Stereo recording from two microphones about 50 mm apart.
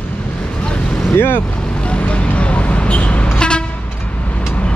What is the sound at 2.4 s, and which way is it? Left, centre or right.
Vehicle, left.